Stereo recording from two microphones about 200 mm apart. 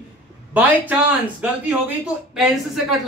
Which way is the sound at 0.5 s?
10° right (ahead or behind).